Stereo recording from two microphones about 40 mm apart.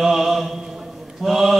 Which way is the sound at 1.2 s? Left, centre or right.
Centre.